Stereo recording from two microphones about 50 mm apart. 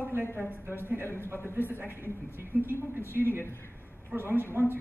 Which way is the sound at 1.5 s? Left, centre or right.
Right.